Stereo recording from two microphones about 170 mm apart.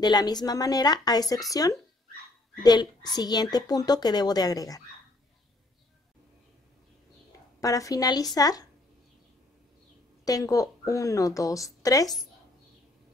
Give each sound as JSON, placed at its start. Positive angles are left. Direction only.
{"t": 0.0, "sound": "speech", "side_deg": 25}
{"t": 7.6, "sound": "speech", "side_deg": 20}
{"t": 10.2, "sound": "speech", "side_deg": 20}